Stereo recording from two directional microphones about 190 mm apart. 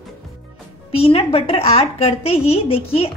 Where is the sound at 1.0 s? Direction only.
30° left (ahead or behind).